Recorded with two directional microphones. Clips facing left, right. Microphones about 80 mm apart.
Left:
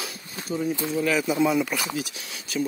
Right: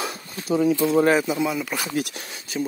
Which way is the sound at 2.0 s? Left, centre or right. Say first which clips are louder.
Right 5 dB; right.